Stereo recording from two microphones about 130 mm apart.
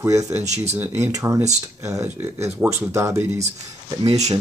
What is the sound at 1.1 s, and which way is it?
Speech, 25° right (ahead or behind).